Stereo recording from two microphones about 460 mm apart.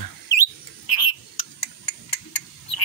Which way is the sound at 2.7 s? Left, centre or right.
Left.